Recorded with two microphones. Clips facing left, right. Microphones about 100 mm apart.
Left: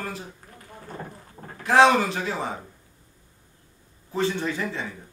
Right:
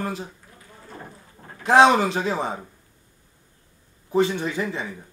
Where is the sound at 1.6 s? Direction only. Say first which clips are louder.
Right 2 dB; 20° right (ahead or behind).